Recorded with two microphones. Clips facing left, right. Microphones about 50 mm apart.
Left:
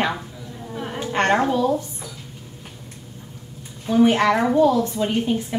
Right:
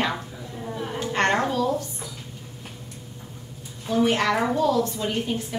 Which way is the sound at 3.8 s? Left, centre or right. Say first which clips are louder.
Left 5 dB; centre.